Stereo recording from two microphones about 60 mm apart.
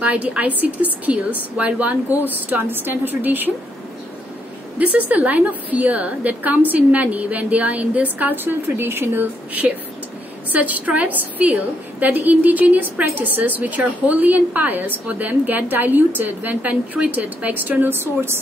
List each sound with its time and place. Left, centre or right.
0.0 s a woman's voice: right
4.7 s a woman's voice: right